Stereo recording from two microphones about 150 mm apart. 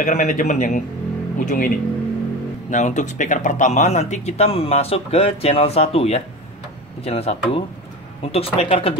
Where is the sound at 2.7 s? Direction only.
55° left (ahead or behind).